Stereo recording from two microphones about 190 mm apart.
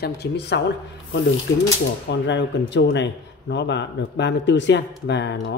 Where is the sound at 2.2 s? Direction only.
70° left (ahead or behind).